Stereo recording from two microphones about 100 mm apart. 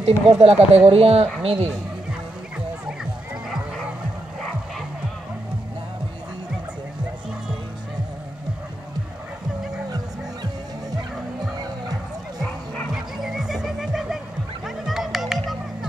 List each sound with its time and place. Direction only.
0.0 s speech: 90° right
0.7 s speech: 80° right
9.8 s music: 40° right (ahead or behind)
12.9 s music: 5° right (ahead or behind)